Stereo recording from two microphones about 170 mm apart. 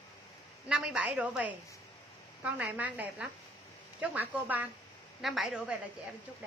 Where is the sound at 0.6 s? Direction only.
5° right (ahead or behind).